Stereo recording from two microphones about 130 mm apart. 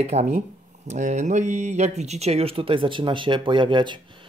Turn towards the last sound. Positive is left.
turn(degrees=-40)  # may be behind; listen again after turning